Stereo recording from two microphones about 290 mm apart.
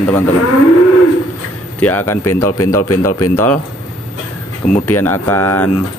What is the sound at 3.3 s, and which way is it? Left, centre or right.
Speech, centre.